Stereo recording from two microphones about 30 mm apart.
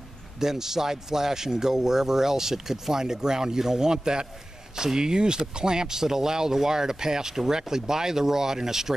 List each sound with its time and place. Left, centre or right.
0.4 s speech: centre